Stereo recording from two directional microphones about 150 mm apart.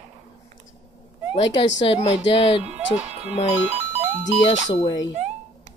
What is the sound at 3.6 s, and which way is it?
Music, 45° right (ahead or behind).